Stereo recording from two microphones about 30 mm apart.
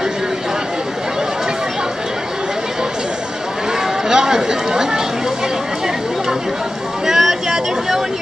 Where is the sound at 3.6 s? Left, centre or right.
Centre.